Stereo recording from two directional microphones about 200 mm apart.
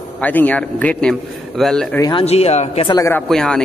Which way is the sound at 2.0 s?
25° left (ahead or behind).